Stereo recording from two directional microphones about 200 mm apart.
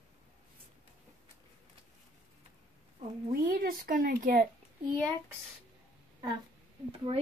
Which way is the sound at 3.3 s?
45° right (ahead or behind).